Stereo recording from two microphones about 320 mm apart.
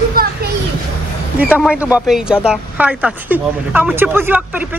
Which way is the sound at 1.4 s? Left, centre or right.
Centre.